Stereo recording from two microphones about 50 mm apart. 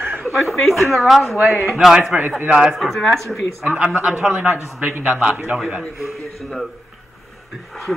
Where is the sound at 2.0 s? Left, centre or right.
Right.